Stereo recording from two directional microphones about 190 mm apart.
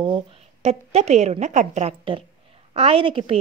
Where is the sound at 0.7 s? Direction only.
35° right (ahead or behind).